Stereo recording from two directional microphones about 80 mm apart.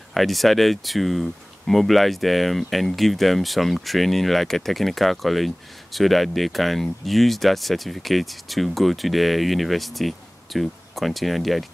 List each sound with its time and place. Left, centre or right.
0.1 s speech: centre